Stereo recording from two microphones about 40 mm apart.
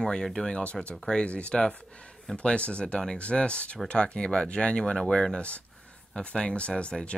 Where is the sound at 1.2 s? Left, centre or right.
Left.